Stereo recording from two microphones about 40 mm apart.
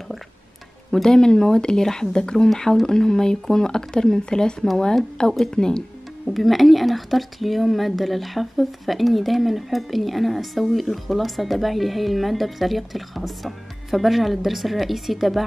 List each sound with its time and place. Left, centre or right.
1.0 s a woman's voice: centre
6.2 s speech: centre